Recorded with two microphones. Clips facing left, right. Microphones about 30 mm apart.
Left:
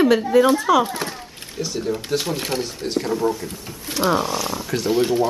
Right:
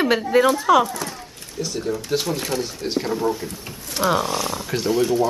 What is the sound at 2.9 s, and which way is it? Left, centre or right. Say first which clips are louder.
Speech: left 1 dB; centre.